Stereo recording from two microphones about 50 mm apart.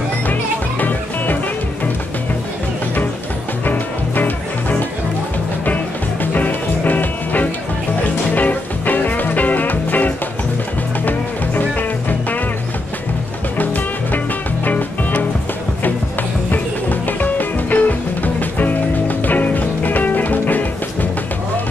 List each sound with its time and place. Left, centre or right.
0.3 s music: left
3.6 s music: left
6.3 s music: left
13.6 s music: left
16.4 s music: left